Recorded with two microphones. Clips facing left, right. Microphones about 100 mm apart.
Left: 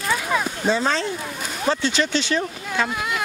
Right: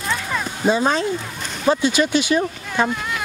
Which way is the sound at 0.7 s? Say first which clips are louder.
Right 5 dB; 15° right (ahead or behind).